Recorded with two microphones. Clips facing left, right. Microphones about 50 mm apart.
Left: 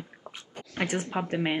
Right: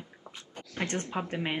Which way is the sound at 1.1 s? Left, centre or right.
Centre.